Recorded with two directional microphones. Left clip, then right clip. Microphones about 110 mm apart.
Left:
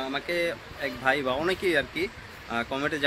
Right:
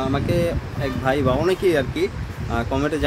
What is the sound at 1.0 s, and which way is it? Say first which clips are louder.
Speech: right 5 dB; centre (ahead or behind).